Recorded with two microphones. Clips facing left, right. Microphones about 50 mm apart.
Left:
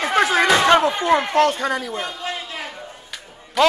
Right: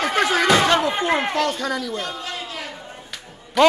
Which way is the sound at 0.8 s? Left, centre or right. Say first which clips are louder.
Left 3 dB; centre.